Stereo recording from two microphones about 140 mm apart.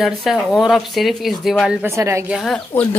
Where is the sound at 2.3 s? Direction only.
Centre (ahead or behind).